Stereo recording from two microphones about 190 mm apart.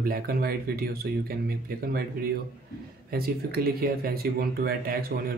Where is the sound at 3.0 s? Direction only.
50° right (ahead or behind).